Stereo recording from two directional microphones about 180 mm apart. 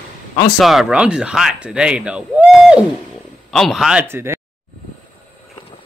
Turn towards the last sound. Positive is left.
turn(degrees=-15)  # may be behind; listen again after turning